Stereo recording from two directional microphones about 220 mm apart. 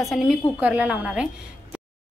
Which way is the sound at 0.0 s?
Centre (ahead or behind).